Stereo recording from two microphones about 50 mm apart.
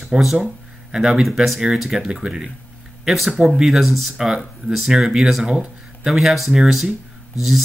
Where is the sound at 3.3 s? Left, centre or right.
Centre.